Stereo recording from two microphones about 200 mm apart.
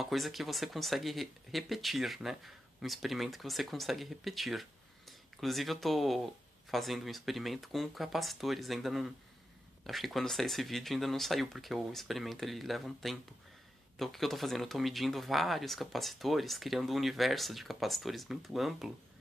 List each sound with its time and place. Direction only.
0.0 s speech: centre (ahead or behind)